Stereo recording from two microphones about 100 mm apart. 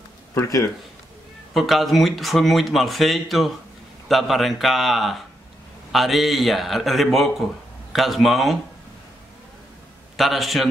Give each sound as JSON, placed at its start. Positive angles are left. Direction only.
{"t": 0.3, "sound": "speech", "side_deg": 30}
{"t": 1.5, "sound": "speech", "side_deg": 0}
{"t": 10.1, "sound": "speech", "side_deg": 0}